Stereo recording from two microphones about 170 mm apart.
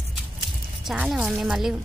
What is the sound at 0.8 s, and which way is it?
Speech, 5° right (ahead or behind).